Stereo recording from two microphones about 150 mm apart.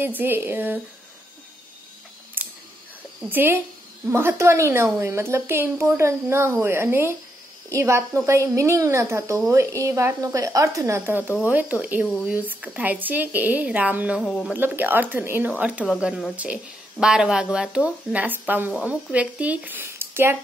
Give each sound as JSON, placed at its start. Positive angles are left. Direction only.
{"t": 0.2, "sound": "speech", "side_deg": -15}
{"t": 2.4, "sound": "a sound", "side_deg": -15}
{"t": 3.3, "sound": "speech", "side_deg": -15}
{"t": 14.2, "sound": "speech", "side_deg": 0}
{"t": 14.6, "sound": "speech", "side_deg": -10}